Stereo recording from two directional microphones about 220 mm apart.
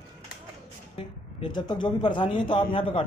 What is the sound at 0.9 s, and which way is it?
A man's voice, 20° left (ahead or behind).